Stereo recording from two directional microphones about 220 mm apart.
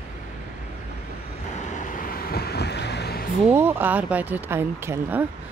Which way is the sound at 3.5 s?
10° right (ahead or behind).